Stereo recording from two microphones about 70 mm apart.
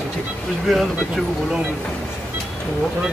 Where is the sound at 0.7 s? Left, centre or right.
Centre.